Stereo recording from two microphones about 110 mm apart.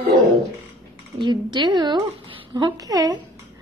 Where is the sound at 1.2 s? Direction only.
45° right (ahead or behind).